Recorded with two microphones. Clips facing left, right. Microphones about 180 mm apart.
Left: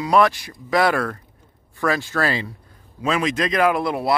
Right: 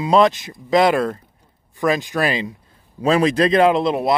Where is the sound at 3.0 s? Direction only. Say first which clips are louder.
Right 6 dB; 35° right (ahead or behind).